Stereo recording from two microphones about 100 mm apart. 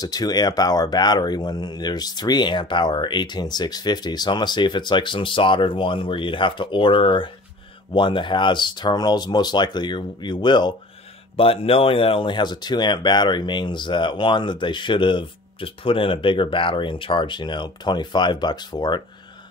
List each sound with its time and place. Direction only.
0.0 s speech: 40° left (ahead or behind)
11.3 s speech: 70° left (ahead or behind); by 19.0 s 45° left (ahead or behind)